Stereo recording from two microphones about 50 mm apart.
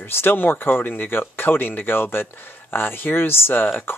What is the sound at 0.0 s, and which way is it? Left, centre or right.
Speech, left.